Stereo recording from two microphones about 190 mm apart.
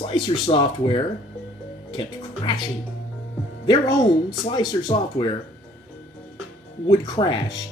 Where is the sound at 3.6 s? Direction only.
20° left (ahead or behind).